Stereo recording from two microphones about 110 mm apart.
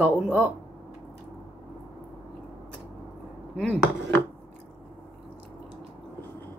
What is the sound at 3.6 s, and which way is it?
Chopping, 15° left (ahead or behind).